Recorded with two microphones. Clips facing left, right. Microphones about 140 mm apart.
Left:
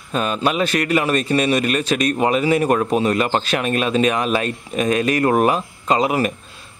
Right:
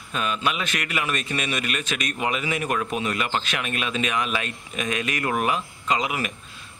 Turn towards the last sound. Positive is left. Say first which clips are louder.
# left 8 dB
turn(degrees=40)  # may be behind; listen again after turning